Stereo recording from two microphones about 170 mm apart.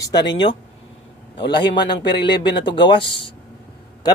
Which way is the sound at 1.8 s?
75° left (ahead or behind).